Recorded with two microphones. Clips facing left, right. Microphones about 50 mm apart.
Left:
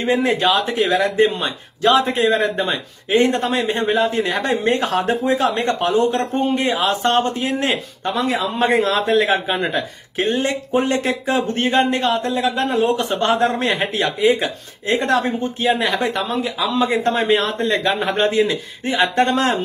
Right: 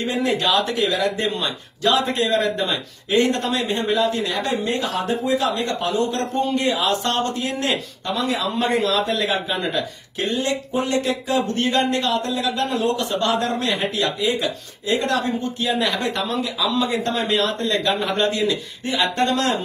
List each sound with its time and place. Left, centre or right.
0.0 s a man's voice: left